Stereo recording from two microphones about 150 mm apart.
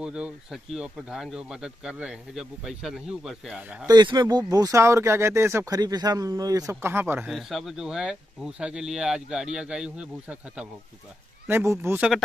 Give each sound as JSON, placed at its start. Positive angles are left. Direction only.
{"t": 0.0, "sound": "speech", "side_deg": -5}
{"t": 3.8, "sound": "speech", "side_deg": -30}
{"t": 5.8, "sound": "speech", "side_deg": -25}
{"t": 7.2, "sound": "speech", "side_deg": 0}
{"t": 11.4, "sound": "speech", "side_deg": -15}